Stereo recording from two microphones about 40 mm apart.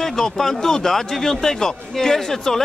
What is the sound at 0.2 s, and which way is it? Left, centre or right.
A man's voice, centre.